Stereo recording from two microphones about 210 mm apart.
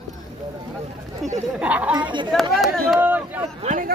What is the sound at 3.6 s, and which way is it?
Speech, 35° right (ahead or behind).